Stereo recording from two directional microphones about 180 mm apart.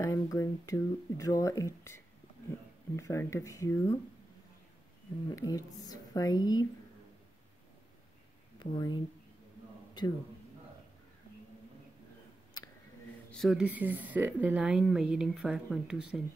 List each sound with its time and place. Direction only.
0.0 s speech: 20° left (ahead or behind)
5.3 s a woman's voice: 20° left (ahead or behind)
8.5 s speech: 25° left (ahead or behind)
13.3 s a woman's voice: centre (ahead or behind)